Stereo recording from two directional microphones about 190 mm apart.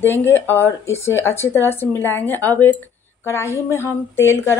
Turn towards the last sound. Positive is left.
turn(degrees=10)  # may be behind; listen again after turning